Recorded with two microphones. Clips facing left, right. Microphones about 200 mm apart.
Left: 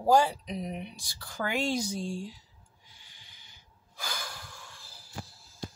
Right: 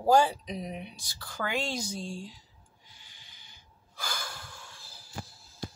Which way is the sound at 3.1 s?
50° left (ahead or behind).